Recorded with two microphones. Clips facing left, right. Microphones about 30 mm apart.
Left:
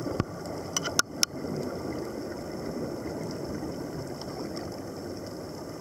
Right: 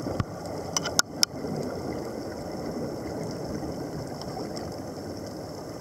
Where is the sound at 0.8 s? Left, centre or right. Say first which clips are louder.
Right 1 dB; right.